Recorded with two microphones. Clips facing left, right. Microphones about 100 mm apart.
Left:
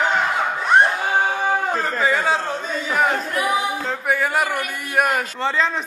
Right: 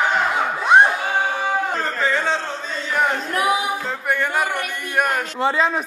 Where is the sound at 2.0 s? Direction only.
10° left (ahead or behind).